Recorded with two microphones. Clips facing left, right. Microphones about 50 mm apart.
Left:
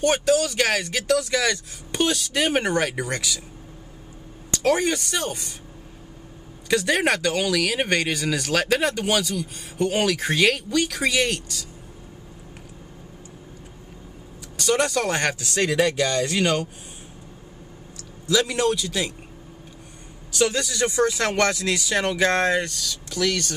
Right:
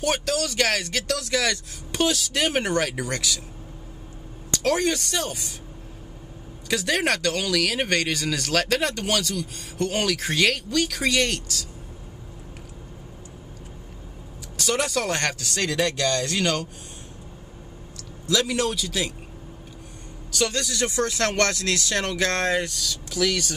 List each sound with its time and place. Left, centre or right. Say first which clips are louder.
0.0 s speech: left 5 dB; centre
4.6 s speech: left 2 dB; centre
6.7 s speech: left 3 dB; centre
14.6 s speech: left 3 dB; centre
18.2 s speech: left 2 dB; centre
20.3 s speech: left 3 dB; centre